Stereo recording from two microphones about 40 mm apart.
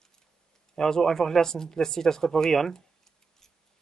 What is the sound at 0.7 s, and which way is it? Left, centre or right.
Speech, centre.